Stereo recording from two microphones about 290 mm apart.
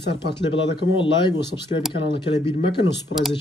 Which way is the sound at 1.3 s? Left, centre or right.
Centre.